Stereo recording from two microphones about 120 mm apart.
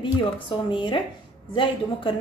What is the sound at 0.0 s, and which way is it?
Speech, 45° left (ahead or behind).